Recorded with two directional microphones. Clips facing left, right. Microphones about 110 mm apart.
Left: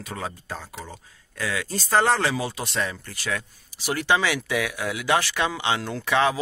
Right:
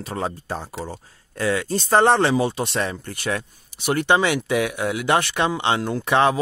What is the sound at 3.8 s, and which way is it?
Speech, 50° right (ahead or behind).